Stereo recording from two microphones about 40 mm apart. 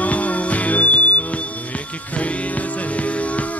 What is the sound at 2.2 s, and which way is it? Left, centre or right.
Music, left.